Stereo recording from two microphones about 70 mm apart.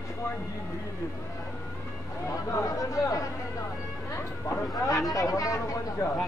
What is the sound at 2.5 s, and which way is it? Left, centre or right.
Speech, left.